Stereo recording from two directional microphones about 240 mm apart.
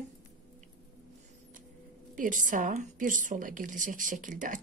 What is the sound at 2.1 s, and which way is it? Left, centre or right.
A woman's voice, right.